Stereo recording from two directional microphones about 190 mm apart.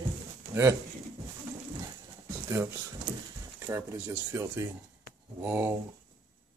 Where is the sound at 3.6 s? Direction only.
15° right (ahead or behind).